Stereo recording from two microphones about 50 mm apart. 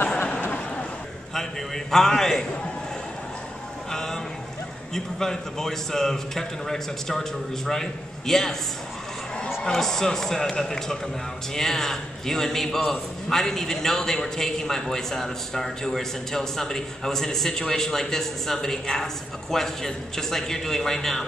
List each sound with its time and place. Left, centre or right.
0.2 s a sound: left
1.9 s a man's voice: centre
3.9 s a man's voice: centre
9.6 s a man's voice: centre